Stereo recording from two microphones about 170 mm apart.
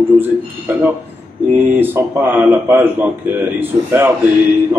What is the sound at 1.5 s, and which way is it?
Speech, 10° right (ahead or behind).